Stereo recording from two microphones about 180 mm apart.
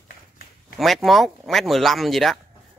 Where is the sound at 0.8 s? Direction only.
Centre (ahead or behind).